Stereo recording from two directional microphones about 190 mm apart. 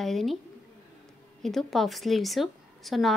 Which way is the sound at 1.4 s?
Centre (ahead or behind).